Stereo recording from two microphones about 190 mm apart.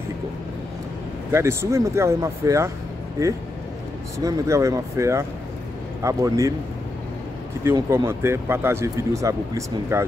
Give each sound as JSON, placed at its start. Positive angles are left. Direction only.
{"t": 1.3, "sound": "speech", "side_deg": -15}
{"t": 4.2, "sound": "speech", "side_deg": -15}
{"t": 7.9, "sound": "speech", "side_deg": -15}